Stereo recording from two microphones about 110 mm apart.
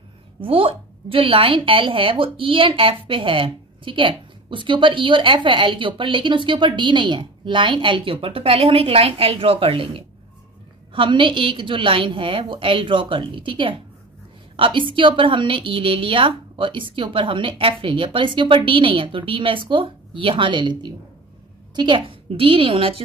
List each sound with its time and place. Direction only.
0.4 s a woman's voice: 55° right (ahead or behind)